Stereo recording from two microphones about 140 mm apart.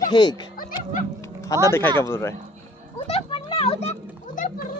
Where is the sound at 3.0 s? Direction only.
40° left (ahead or behind).